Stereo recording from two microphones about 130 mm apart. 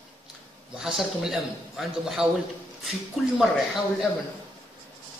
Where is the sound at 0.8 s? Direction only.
5° right (ahead or behind).